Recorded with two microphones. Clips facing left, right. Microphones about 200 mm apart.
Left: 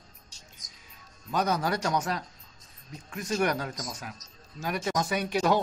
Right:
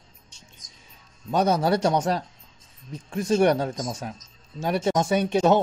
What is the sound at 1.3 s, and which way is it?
Speech, 30° right (ahead or behind).